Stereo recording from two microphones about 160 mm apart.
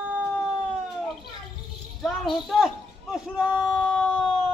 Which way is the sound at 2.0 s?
Centre (ahead or behind).